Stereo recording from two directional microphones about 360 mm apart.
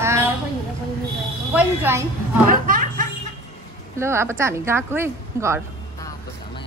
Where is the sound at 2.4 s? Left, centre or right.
Right.